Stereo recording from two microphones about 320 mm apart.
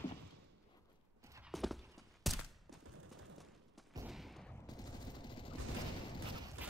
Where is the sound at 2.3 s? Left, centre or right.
Centre.